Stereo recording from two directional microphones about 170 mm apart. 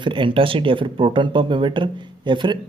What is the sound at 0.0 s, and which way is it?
Speech, 30° right (ahead or behind).